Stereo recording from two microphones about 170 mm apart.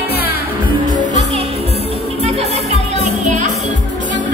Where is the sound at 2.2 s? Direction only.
35° right (ahead or behind).